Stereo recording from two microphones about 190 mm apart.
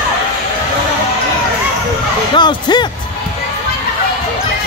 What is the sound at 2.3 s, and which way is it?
Speech, 25° left (ahead or behind).